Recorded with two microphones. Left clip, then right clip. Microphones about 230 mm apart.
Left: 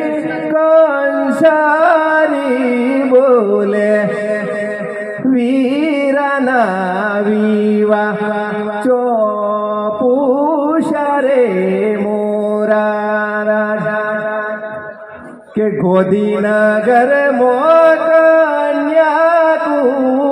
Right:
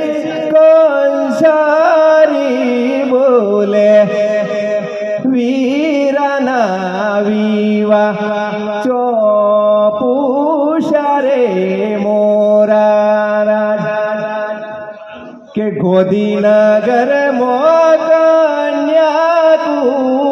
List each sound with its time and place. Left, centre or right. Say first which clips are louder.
0.5 s a sound: right 3 dB; right
5.3 s carnatic music: left 3 dB; right
7.2 s mantra: left 1 dB; right
9.4 s music: right 7 dB; right
10.9 s a sound: right 2 dB; right
12.2 s mantra: right 6 dB; right
15.8 s mantra: right 2 dB; right
18.9 s music: even; right